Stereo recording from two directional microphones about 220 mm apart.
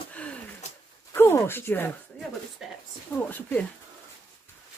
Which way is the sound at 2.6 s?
Centre (ahead or behind).